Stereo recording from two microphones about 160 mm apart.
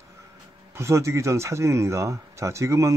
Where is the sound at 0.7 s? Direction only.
15° right (ahead or behind).